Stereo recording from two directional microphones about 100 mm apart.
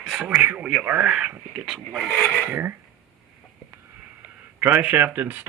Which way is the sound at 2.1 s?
20° left (ahead or behind).